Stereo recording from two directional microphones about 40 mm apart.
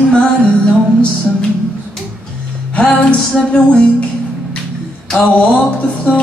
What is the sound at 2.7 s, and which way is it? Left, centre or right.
Music, left.